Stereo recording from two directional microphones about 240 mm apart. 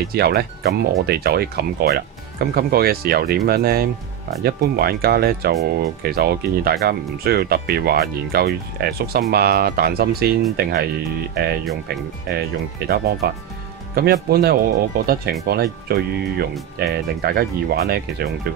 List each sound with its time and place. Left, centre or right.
0.1 s speech: right
12.3 s speech: right